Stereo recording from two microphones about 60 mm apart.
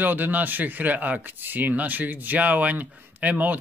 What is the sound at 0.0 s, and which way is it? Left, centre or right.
Speech, right.